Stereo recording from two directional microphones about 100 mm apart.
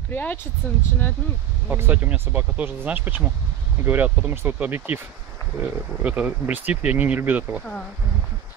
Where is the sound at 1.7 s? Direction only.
20° right (ahead or behind).